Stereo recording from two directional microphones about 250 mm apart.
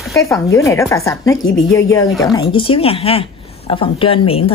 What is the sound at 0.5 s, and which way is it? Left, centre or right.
A woman's voice, centre.